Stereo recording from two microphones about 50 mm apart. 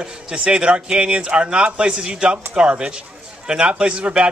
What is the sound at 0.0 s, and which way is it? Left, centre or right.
A man's voice, centre.